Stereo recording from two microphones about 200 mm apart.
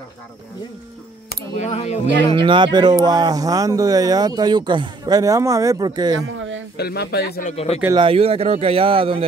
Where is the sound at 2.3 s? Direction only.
25° right (ahead or behind).